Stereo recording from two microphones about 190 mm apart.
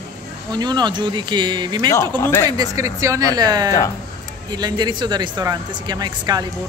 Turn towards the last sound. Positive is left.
turn(degrees=-20)  # may be behind; listen again after turning